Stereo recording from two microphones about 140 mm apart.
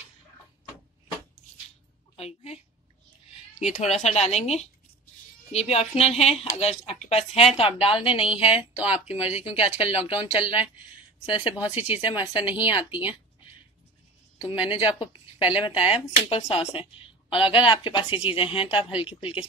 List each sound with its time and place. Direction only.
2.1 s a sound: 45° left (ahead or behind)
3.6 s speech: 55° left (ahead or behind); by 13.1 s 35° left (ahead or behind)
14.5 s speech: 40° left (ahead or behind)